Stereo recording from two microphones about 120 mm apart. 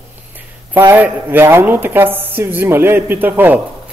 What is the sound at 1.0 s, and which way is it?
Speech, 20° right (ahead or behind).